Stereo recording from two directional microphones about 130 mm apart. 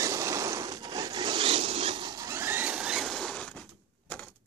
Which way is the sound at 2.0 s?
30° right (ahead or behind).